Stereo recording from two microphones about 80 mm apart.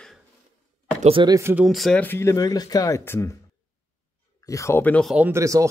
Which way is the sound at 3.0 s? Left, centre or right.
Left.